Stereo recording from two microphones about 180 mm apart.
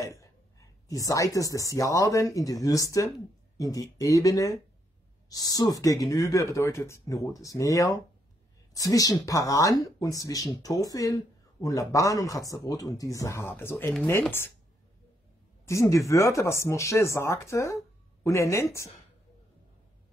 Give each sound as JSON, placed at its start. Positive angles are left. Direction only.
{"t": 0.0, "sound": "speech", "side_deg": 15}
{"t": 15.6, "sound": "speech", "side_deg": 15}